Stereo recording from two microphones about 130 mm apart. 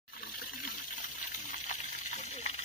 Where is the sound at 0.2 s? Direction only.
90° left.